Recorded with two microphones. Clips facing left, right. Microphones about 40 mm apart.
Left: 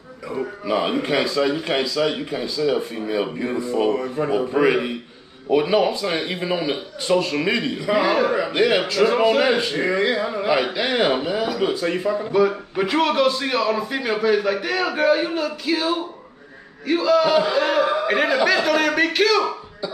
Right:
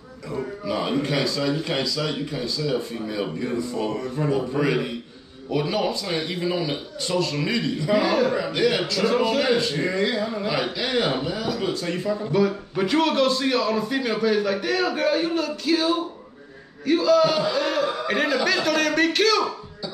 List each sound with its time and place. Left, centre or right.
0.3 s a man's voice: left